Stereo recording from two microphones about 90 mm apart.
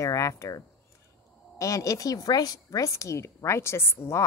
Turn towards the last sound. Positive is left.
turn(degrees=30)  # may be behind; listen again after turning